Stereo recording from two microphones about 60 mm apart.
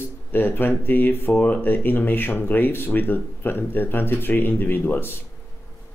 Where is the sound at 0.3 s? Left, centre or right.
Left.